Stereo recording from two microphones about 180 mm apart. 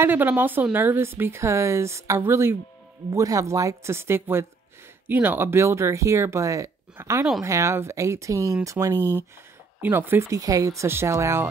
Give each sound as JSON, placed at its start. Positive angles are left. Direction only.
{"t": 0.0, "sound": "a woman's voice", "side_deg": -10}
{"t": 8.9, "sound": "speech", "side_deg": 10}
{"t": 9.8, "sound": "a woman's voice", "side_deg": -10}